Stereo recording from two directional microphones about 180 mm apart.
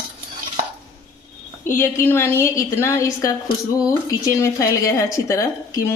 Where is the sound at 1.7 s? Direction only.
15° left (ahead or behind).